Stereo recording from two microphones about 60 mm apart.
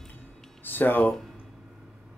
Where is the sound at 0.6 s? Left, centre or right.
Left.